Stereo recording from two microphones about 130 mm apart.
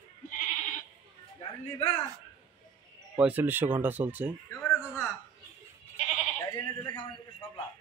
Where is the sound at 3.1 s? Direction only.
15° right (ahead or behind).